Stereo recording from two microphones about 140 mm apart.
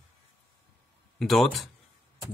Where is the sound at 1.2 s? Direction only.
Centre (ahead or behind).